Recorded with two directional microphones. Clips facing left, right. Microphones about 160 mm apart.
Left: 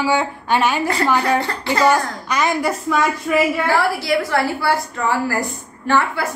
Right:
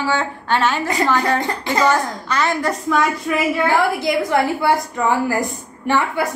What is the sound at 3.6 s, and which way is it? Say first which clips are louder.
A woman's voice: right 1 dB; 20° right (ahead or behind).